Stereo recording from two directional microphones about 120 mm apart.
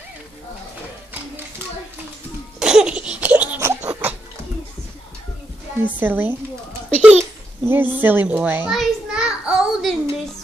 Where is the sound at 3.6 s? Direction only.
15° right (ahead or behind).